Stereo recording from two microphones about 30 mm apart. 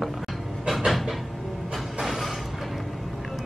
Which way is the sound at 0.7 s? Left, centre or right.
Centre.